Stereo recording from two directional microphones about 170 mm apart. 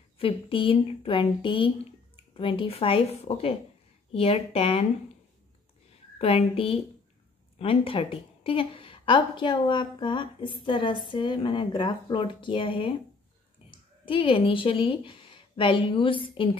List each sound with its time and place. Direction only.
0.2 s a woman's voice: 30° left (ahead or behind)
6.1 s a woman's voice: 35° left (ahead or behind)